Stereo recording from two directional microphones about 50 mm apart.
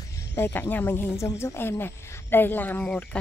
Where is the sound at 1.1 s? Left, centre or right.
Left.